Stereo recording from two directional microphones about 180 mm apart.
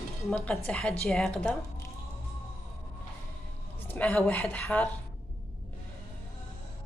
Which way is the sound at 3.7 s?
10° left (ahead or behind).